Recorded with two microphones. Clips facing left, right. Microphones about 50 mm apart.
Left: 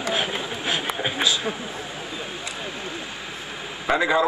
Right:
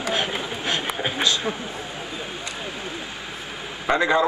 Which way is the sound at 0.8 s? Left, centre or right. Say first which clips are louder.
Even; centre.